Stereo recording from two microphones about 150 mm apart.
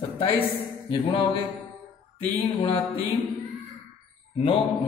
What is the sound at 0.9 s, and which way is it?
Music, 30° left (ahead or behind).